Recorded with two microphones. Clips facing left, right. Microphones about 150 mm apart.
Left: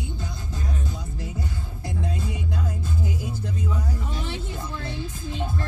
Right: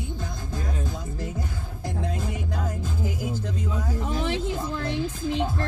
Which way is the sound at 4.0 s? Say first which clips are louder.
Right 6 dB; 90° right.